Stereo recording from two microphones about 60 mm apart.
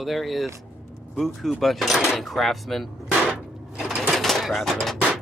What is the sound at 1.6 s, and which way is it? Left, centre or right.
Speech, centre.